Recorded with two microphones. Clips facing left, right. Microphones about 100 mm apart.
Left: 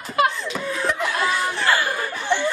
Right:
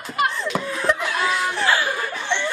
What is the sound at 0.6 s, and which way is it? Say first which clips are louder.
Laughter: right 1 dB; centre (ahead or behind).